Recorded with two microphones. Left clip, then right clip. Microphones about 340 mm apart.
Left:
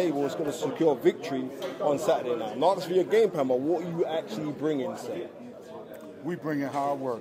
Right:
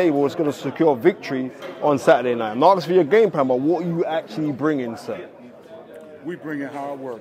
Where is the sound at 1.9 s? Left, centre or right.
Right.